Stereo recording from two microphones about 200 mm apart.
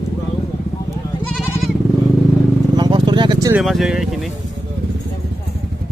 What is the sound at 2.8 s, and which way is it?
Vehicle, 20° right (ahead or behind).